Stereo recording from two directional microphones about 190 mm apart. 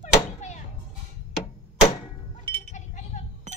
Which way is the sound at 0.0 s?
40° left (ahead or behind).